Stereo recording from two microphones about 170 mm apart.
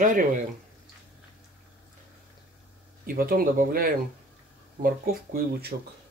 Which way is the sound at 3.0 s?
60° right (ahead or behind).